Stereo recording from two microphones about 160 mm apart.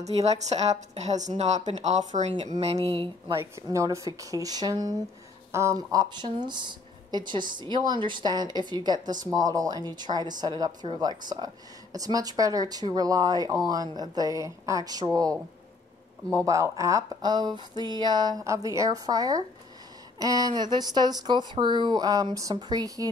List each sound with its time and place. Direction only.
0.0 s speech: 45° right (ahead or behind)
3.3 s speech: 20° right (ahead or behind)